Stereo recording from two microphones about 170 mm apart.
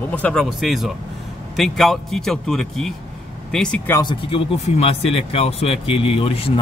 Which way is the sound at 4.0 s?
30° left (ahead or behind).